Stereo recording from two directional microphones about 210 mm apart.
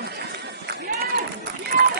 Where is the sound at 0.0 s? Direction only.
55° right (ahead or behind).